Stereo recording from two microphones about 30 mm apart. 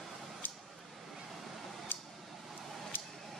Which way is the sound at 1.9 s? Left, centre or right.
Left.